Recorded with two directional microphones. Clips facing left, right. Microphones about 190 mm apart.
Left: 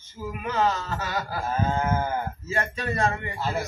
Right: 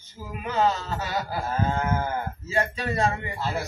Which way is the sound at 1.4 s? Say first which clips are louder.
Left 3 dB; 15° left (ahead or behind).